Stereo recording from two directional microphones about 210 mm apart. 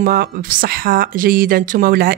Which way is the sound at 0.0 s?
45° right (ahead or behind).